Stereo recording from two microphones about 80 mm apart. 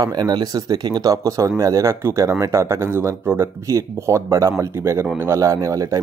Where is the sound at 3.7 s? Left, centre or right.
Right.